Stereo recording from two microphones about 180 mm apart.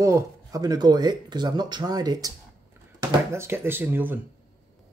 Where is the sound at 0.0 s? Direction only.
20° right (ahead or behind).